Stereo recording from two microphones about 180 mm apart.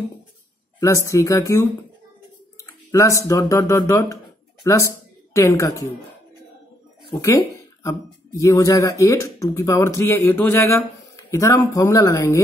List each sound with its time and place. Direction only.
0.7 s a woman's voice: 15° left (ahead or behind)
7.1 s speech: 20° left (ahead or behind)
8.4 s speech: 15° left (ahead or behind)